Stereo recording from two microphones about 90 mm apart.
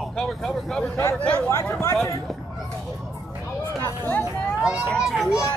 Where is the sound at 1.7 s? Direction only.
40° left (ahead or behind).